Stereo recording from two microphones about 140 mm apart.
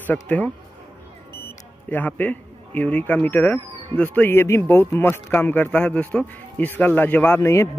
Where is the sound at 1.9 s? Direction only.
10° left (ahead or behind).